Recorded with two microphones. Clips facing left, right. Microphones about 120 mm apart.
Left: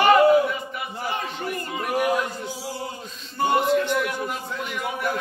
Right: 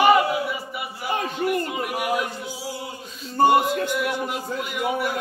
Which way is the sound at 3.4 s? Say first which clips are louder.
Right 6 dB; 40° right (ahead or behind).